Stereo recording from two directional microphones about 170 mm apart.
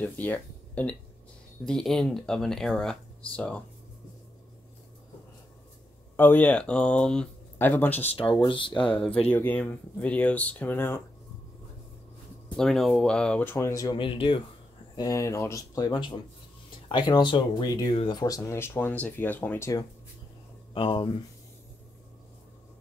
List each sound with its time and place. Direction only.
0.0 s speech: 10° left (ahead or behind)
6.1 s speech: 10° left (ahead or behind)
8.1 s speech: 30° left (ahead or behind)
9.3 s speech: 10° left (ahead or behind)
12.5 s speech: centre (ahead or behind); by 14.0 s 20° left (ahead or behind)
14.0 s speech: 30° left (ahead or behind)
15.0 s speech: 20° left (ahead or behind)
20.7 s speech: 30° left (ahead or behind)